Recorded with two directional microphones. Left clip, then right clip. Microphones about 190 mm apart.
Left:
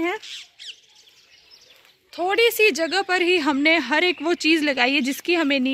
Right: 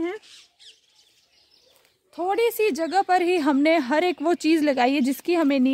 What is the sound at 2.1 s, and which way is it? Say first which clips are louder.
A woman's voice: left 3 dB; 55° right (ahead or behind).